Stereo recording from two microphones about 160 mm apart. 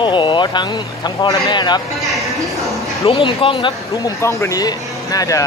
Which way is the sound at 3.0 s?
35° left (ahead or behind).